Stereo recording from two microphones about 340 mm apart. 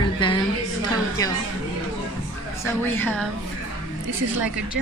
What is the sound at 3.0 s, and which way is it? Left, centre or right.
Speech, centre.